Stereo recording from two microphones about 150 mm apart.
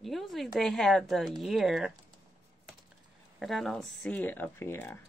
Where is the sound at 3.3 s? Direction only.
Centre (ahead or behind).